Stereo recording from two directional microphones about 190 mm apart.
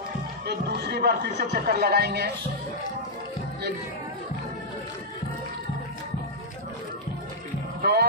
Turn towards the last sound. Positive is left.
turn(degrees=-60)  # may be behind; listen again after turning